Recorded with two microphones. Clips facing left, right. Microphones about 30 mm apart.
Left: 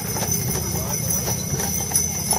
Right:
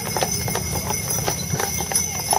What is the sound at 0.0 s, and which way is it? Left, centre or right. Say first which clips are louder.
Clip-clop: right 2 dB; right.